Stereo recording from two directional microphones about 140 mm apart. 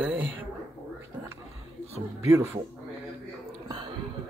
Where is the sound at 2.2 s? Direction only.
20° right (ahead or behind).